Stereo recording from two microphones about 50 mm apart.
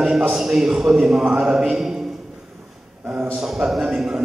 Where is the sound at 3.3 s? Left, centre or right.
Centre.